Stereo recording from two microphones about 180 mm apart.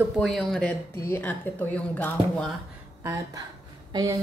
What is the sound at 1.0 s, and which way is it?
Speech, 15° left (ahead or behind).